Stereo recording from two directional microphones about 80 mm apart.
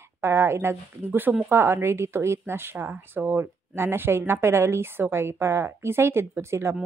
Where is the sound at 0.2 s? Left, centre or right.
Right.